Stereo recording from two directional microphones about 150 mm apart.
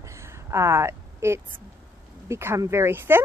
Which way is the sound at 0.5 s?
20° right (ahead or behind).